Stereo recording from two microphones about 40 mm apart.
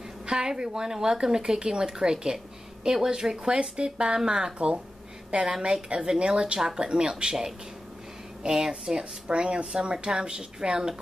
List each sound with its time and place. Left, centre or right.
0.3 s a woman's voice: centre
8.5 s a woman's voice: centre
8.9 s speech: right